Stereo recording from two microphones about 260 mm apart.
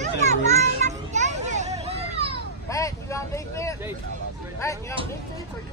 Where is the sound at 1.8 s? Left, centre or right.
Right.